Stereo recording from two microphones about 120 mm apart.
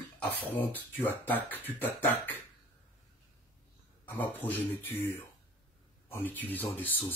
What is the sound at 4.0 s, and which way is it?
Speech, 15° left (ahead or behind).